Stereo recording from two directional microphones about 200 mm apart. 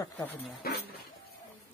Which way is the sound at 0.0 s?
10° left (ahead or behind).